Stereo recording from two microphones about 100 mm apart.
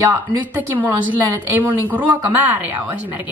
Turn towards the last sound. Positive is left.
turn(degrees=-20)  # may be behind; listen again after turning